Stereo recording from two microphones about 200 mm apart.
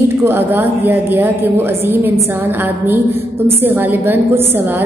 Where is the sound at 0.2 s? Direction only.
10° right (ahead or behind).